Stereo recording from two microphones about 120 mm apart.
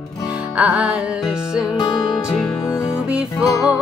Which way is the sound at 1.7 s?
35° left (ahead or behind).